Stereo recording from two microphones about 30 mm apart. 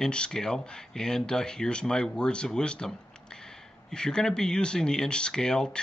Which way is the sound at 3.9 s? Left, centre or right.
Left.